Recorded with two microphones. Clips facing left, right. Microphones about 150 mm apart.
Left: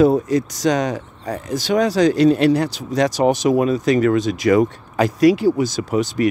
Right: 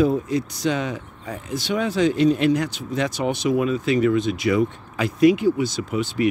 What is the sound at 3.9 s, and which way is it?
Speech, 90° left.